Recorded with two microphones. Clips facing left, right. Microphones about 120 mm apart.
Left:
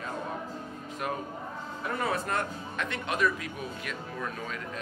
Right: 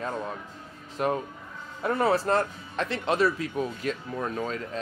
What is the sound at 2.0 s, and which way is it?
Speech, 30° right (ahead or behind).